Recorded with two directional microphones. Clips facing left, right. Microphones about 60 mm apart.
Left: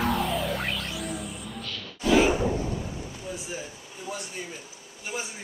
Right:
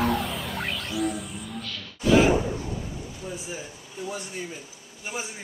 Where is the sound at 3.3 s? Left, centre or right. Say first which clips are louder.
Even; centre.